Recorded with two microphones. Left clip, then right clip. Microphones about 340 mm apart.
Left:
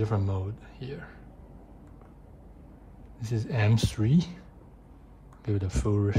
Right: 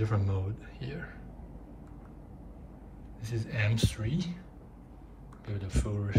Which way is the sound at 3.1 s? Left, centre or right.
Centre.